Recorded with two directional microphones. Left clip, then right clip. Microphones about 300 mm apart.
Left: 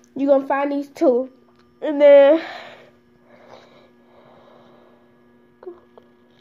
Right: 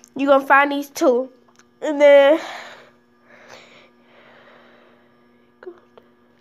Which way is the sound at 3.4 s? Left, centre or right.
Right.